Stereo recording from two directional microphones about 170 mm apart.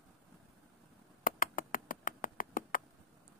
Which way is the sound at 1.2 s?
55° left (ahead or behind).